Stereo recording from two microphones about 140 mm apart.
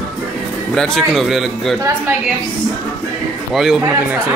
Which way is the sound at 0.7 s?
Centre (ahead or behind).